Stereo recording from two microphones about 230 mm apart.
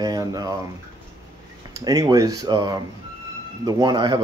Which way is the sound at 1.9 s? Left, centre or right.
Centre.